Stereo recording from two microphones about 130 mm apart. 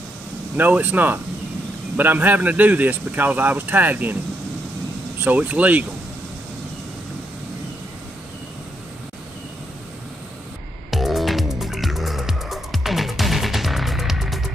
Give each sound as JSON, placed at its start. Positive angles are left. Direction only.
{"t": 0.6, "sound": "speech", "side_deg": -15}
{"t": 5.2, "sound": "speech", "side_deg": -15}
{"t": 10.9, "sound": "music", "side_deg": 0}